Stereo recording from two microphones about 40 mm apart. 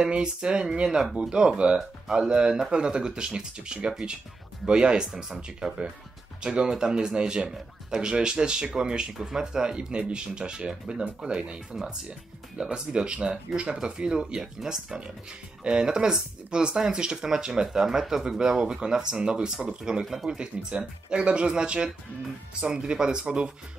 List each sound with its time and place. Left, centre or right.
0.0 s speech: right
17.8 s speech: centre; by 23.5 s right